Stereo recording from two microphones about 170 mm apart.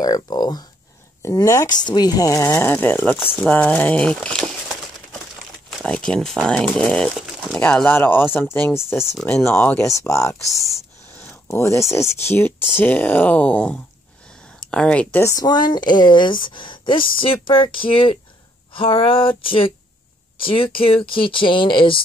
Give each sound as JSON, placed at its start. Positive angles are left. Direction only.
{"t": 0.0, "sound": "speech", "side_deg": 25}